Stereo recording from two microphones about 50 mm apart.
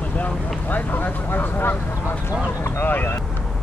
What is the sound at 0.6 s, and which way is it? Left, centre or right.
Vehicle, left.